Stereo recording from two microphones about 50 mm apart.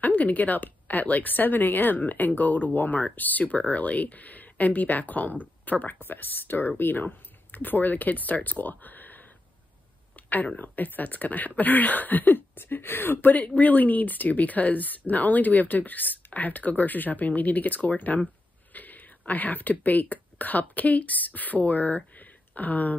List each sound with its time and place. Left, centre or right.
0.0 s speech: left
8.5 s a sound: left
10.1 s speech: left